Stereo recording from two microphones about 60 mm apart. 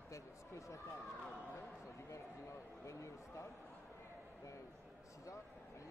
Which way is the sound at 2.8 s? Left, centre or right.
Left.